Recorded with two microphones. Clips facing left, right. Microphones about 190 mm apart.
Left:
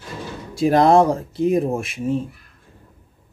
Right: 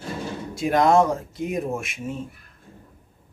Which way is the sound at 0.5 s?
35° left (ahead or behind).